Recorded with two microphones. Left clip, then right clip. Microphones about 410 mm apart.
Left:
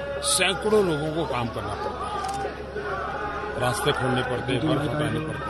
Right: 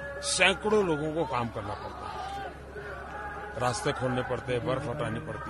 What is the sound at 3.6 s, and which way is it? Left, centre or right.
A man's voice, right.